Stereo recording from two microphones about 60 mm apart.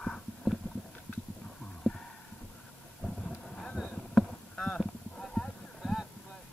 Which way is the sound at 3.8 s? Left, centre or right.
Centre.